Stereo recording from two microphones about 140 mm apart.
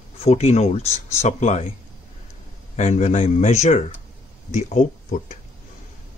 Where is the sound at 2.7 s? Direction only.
55° left (ahead or behind).